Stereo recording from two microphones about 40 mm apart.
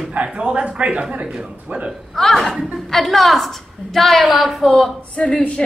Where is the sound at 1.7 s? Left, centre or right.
Right.